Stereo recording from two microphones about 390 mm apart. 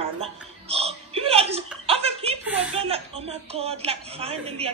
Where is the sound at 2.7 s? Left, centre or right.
Centre.